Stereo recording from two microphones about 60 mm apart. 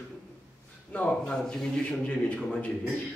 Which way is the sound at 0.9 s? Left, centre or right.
Centre.